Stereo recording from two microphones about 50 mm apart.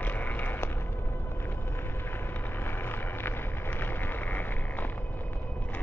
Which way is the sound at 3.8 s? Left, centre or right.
Left.